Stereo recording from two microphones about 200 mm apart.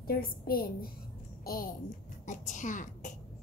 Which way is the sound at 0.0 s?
45° left (ahead or behind).